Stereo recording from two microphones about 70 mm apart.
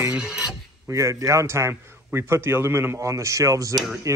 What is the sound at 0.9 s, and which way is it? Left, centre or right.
A man's voice, right.